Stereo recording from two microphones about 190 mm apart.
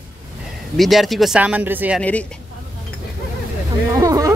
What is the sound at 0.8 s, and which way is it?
Speech, centre (ahead or behind).